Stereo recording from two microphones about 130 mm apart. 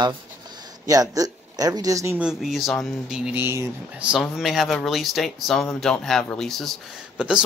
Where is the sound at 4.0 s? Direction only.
5° right (ahead or behind).